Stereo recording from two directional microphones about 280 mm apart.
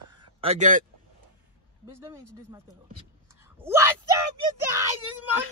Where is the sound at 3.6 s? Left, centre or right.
Centre.